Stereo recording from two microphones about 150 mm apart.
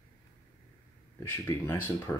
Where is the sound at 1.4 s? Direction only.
20° left (ahead or behind).